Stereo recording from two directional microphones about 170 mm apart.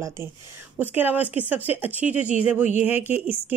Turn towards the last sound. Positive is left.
turn(degrees=-10)  # may be behind; listen again after turning